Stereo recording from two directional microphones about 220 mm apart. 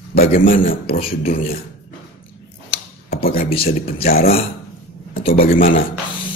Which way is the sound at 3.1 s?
45° left (ahead or behind).